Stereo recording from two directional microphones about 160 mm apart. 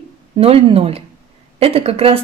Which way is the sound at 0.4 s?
35° right (ahead or behind).